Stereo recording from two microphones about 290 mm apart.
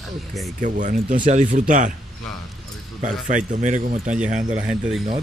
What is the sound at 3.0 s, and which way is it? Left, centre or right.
Speech, right.